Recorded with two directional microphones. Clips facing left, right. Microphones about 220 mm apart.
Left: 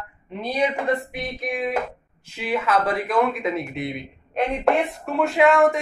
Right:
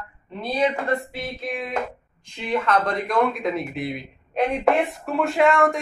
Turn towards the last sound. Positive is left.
turn(degrees=0)  # may be behind; listen again after turning